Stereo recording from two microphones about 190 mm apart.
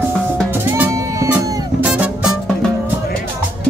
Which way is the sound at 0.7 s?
15° right (ahead or behind).